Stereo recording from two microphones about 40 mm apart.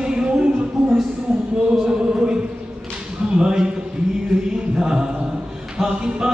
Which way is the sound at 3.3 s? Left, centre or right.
Centre.